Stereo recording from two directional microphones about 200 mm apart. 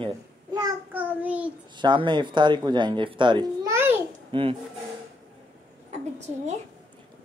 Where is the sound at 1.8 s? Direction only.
25° right (ahead or behind).